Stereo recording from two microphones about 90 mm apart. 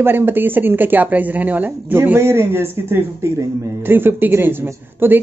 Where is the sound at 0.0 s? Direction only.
25° right (ahead or behind).